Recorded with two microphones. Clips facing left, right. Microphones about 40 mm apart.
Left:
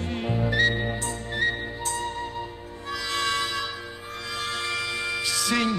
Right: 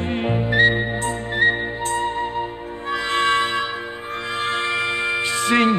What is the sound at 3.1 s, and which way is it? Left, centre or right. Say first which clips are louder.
Music: right 8 dB; right.